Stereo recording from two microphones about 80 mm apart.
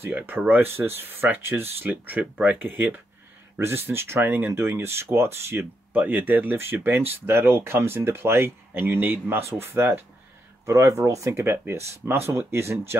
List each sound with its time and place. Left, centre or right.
0.0 s speech: right
5.9 s speech: right
10.6 s speech: right